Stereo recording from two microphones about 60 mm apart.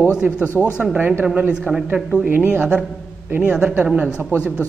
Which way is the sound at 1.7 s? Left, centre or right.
Right.